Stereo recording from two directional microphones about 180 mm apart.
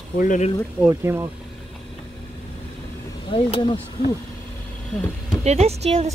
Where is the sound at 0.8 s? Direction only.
15° right (ahead or behind).